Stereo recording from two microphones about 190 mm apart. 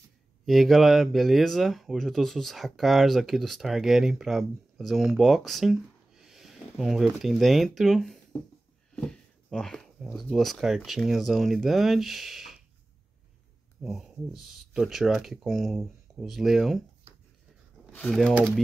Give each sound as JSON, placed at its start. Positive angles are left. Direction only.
{"t": 0.5, "sound": "speech", "side_deg": 0}
{"t": 9.5, "sound": "speech", "side_deg": 0}
{"t": 13.8, "sound": "speech", "side_deg": 0}
{"t": 17.9, "sound": "speech", "side_deg": 0}